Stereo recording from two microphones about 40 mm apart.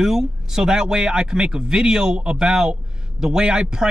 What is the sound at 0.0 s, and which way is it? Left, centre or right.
Speech, centre.